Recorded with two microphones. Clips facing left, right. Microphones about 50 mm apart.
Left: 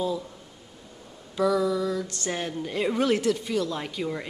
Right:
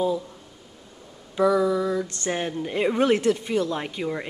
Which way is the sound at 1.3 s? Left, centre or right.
Centre.